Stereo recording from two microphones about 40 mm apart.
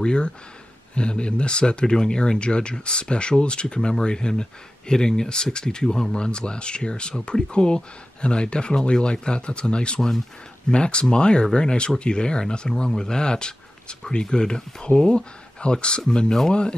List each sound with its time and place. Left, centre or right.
0.0 s speech: left